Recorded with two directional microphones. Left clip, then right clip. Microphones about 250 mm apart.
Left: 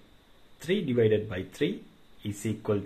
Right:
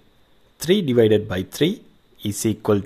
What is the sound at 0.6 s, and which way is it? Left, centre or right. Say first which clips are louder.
Speech: right 9 dB; right.